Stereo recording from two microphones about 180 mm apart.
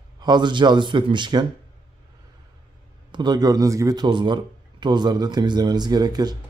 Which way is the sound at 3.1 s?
25° right (ahead or behind).